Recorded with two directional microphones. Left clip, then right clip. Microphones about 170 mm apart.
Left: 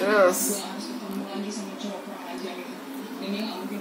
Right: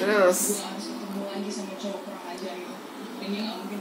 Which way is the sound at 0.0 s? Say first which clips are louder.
Left 1 dB; 15° right (ahead or behind).